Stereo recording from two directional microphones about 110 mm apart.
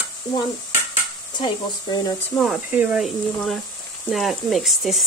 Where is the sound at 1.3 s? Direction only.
40° left (ahead or behind).